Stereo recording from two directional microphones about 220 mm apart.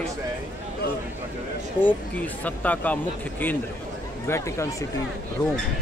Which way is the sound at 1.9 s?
5° left (ahead or behind).